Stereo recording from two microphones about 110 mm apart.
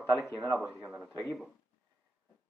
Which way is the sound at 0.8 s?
30° right (ahead or behind).